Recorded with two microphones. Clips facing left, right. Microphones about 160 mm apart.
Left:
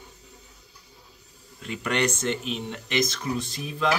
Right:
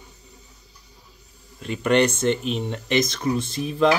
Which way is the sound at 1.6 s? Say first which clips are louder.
Right 7 dB; 30° right (ahead or behind).